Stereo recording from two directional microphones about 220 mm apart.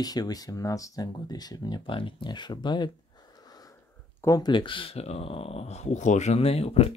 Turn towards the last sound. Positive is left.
turn(degrees=25)  # may be behind; listen again after turning